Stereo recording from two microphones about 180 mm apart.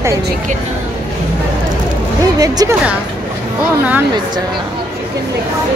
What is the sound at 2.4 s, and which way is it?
Speech, 20° right (ahead or behind).